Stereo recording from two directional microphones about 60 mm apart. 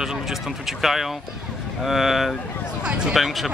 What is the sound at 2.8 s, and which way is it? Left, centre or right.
Speech, centre.